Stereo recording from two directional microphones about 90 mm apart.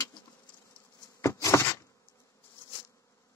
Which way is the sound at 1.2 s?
30° left (ahead or behind).